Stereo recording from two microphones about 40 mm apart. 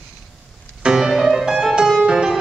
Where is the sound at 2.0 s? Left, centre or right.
Centre.